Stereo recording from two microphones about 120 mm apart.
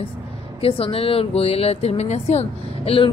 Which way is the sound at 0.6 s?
50° left (ahead or behind).